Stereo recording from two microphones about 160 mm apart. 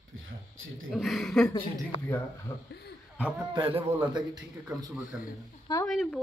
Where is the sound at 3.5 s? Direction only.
30° right (ahead or behind).